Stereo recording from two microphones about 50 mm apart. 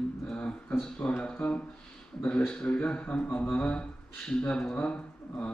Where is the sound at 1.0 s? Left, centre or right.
Left.